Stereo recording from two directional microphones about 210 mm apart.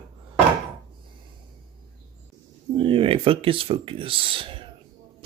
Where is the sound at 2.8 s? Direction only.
25° right (ahead or behind).